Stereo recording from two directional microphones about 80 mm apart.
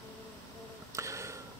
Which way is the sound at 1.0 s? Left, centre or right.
Right.